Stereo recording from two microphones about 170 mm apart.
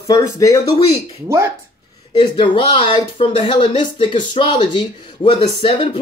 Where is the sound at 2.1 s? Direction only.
30° left (ahead or behind).